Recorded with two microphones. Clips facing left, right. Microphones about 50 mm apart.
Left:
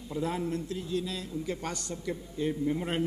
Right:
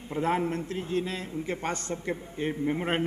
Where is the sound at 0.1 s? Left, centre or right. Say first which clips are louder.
Right 4 dB; right.